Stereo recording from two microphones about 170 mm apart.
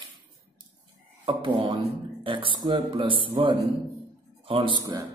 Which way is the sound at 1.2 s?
30° right (ahead or behind).